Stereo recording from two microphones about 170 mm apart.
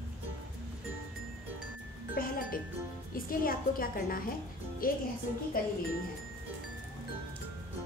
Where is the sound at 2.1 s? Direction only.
55° left (ahead or behind).